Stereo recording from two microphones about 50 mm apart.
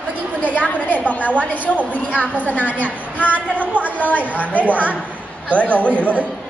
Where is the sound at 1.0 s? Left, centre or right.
Left.